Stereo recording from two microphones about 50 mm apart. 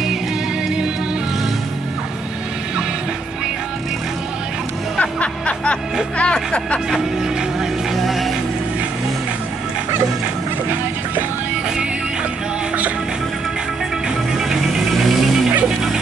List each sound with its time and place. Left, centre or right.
4.9 s music: left
7.9 s music: centre